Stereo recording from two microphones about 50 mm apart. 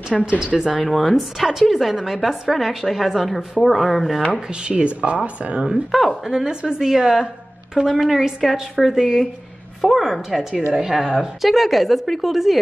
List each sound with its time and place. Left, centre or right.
0.2 s a woman's voice: centre
0.7 s a woman's voice: centre
4.3 s speech: right
5.9 s a woman's voice: centre
6.2 s a woman's voice: centre